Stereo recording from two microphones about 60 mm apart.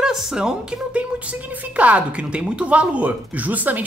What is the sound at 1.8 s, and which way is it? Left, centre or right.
A woman's voice, right.